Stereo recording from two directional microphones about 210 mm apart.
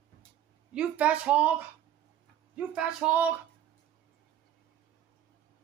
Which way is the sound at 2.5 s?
5° right (ahead or behind).